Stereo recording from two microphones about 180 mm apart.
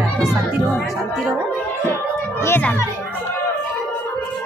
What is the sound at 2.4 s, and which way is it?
Speech, 10° left (ahead or behind).